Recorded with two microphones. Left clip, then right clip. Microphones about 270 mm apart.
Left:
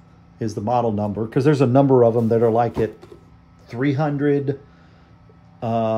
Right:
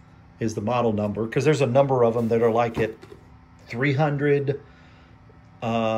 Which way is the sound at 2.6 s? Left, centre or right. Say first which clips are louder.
Left 3 dB; centre.